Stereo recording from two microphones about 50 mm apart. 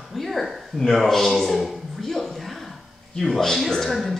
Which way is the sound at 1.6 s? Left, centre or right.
Centre.